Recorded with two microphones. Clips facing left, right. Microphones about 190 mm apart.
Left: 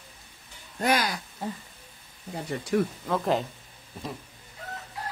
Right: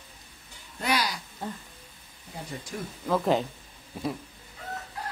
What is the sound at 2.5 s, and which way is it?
Speech, 70° left (ahead or behind).